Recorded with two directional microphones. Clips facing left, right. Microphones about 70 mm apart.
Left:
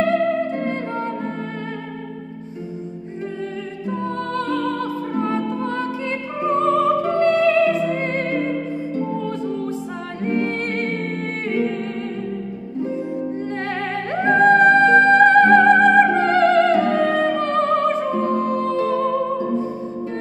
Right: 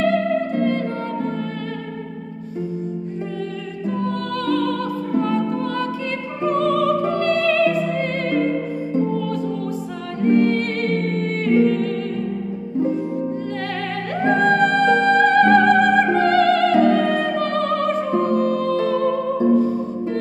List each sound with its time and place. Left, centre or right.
0.0 s music: left
3.9 s music: left
10.2 s music: left
13.7 s music: left